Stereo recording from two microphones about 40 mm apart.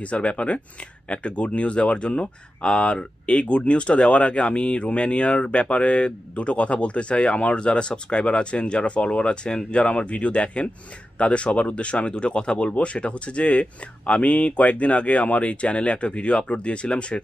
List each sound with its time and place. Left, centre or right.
0.0 s speech: left